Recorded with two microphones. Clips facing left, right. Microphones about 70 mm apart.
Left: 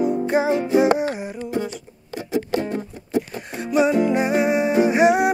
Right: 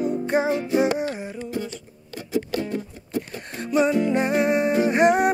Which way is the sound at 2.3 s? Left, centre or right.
Left.